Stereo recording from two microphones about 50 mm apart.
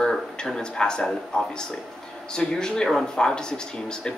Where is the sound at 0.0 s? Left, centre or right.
Centre.